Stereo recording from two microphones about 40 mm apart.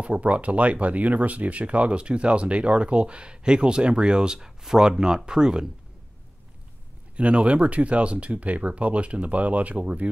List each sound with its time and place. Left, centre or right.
0.0 s speech: right; by 5.7 s centre
7.2 s speech: right